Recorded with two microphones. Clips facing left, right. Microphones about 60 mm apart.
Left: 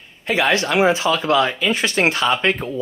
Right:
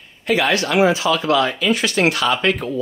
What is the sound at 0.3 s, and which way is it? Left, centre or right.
Speech, left.